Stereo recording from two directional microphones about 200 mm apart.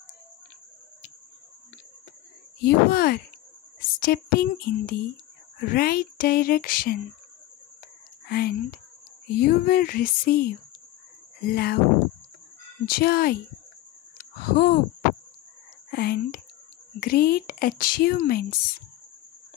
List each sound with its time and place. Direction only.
2.6 s speech: 50° left (ahead or behind)
8.3 s speech: 50° left (ahead or behind)
12.8 s speech: 50° left (ahead or behind)
14.1 s a sound: 50° left (ahead or behind)
15.9 s speech: 50° left (ahead or behind)